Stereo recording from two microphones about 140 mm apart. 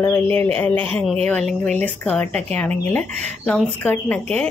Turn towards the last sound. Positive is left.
turn(degrees=10)  # may be behind; listen again after turning